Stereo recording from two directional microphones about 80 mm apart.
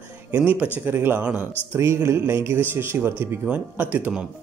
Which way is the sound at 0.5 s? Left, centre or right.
Right.